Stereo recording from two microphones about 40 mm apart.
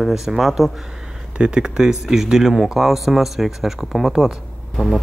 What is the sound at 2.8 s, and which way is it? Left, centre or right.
Speech, centre.